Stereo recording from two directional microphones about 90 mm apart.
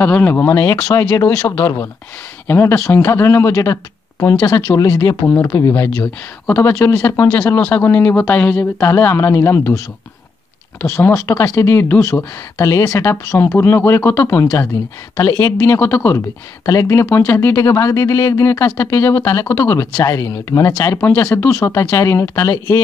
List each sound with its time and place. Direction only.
0.0 s speech: 20° left (ahead or behind); by 5.1 s 40° left (ahead or behind)
5.2 s speech: 20° left (ahead or behind)
5.5 s speech: 35° left (ahead or behind)
6.4 s speech: 20° left (ahead or behind)
6.7 s speech: 35° left (ahead or behind)
7.4 s speech: 20° left (ahead or behind)
8.7 s speech: 30° left (ahead or behind)
15.1 s speech: 35° left (ahead or behind)
15.6 s speech: 25° left (ahead or behind)
16.6 s speech: 35° left (ahead or behind)